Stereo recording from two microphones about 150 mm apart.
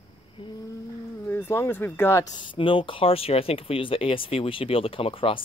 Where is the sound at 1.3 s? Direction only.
15° left (ahead or behind).